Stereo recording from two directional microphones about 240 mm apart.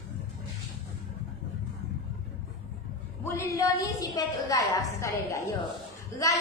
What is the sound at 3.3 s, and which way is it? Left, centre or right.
A woman's voice, centre.